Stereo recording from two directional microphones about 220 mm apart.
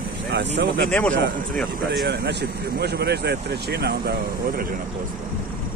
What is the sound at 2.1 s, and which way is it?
A man's voice, 50° right (ahead or behind).